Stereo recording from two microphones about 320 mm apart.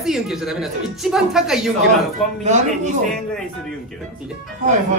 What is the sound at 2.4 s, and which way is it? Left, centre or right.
Speech, right.